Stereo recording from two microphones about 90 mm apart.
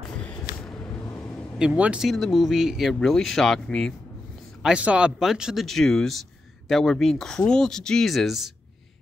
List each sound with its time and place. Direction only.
0.2 s vehicle: 15° left (ahead or behind)
1.0 s vehicle: 35° left (ahead or behind)
1.8 s speech: 15° right (ahead or behind)
2.0 s speech: centre (ahead or behind)
4.6 s speech: 10° right (ahead or behind)